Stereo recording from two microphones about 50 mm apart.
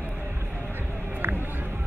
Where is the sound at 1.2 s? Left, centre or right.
Right.